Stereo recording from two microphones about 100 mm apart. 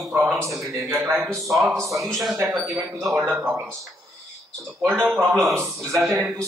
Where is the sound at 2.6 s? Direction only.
25° right (ahead or behind).